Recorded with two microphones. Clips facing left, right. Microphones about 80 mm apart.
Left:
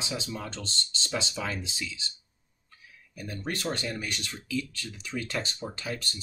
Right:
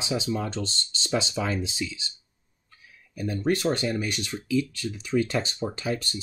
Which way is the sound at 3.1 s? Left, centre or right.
Centre.